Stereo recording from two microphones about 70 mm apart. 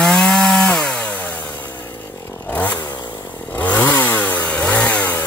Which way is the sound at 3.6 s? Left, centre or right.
Left.